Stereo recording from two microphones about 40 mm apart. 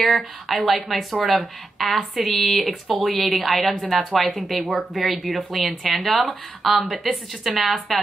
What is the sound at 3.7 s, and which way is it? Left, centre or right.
Speech, centre.